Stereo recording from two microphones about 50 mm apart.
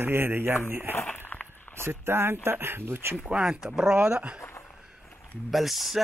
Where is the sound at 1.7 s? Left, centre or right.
Right.